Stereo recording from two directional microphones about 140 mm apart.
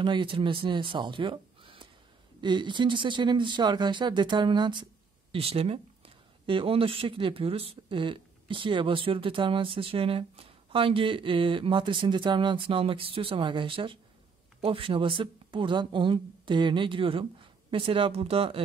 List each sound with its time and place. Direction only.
0.0 s speech: 35° right (ahead or behind)